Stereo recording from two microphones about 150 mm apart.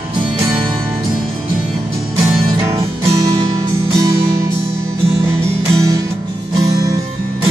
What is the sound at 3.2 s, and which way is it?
Music, 25° right (ahead or behind).